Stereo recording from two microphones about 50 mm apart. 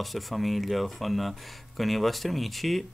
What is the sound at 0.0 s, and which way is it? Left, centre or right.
Speech, centre.